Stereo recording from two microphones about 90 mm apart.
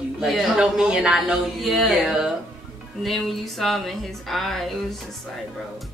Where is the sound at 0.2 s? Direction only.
Centre (ahead or behind).